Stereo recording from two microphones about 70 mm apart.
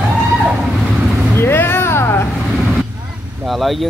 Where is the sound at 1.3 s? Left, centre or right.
Left.